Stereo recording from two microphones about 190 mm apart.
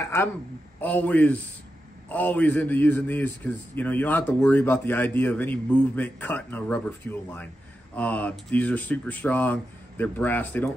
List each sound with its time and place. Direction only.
0.1 s a man's voice: 15° left (ahead or behind)